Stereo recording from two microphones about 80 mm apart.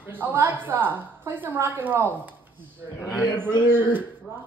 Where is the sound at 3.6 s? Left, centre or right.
Right.